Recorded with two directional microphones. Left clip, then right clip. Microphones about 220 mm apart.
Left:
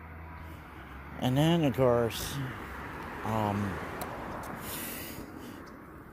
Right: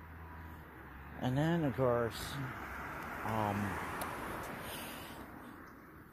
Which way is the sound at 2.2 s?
25° right (ahead or behind).